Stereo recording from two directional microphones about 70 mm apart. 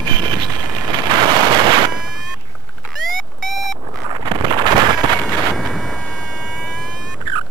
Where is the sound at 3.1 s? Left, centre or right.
Centre.